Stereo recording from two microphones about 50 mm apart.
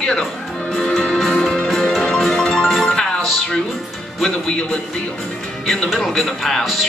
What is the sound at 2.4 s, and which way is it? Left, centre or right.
Music, centre.